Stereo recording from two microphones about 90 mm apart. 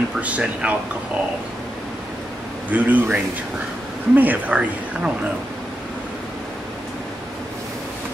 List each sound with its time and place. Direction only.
0.2 s speech: 15° right (ahead or behind)
2.7 s speech: 15° right (ahead or behind)